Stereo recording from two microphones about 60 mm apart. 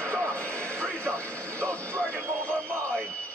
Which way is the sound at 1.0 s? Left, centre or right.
Left.